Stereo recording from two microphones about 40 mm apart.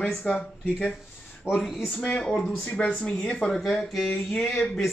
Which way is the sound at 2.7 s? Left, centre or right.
Left.